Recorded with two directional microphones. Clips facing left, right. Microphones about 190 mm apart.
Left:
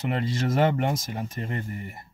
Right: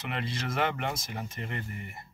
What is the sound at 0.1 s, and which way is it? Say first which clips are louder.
Speech: left 7 dB; 40° left (ahead or behind).